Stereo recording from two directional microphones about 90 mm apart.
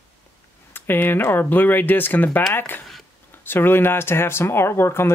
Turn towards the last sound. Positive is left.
turn(degrees=30)  # may be behind; listen again after turning